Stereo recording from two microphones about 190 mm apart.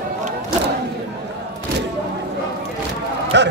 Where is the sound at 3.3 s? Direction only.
70° right (ahead or behind).